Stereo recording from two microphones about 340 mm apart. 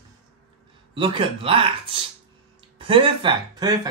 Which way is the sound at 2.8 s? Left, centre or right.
Centre.